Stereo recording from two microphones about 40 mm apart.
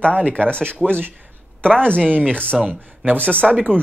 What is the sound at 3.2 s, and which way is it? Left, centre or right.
Speech, left.